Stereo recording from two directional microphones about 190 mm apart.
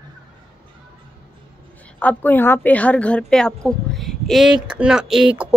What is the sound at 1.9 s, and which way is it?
A woman's voice, 10° left (ahead or behind).